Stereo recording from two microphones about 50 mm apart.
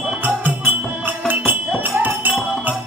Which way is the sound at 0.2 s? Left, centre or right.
Right.